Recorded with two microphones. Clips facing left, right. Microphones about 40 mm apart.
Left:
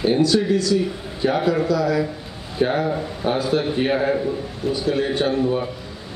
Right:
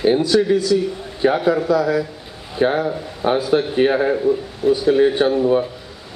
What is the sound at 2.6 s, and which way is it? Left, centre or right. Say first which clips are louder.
Speech: right 2 dB; right.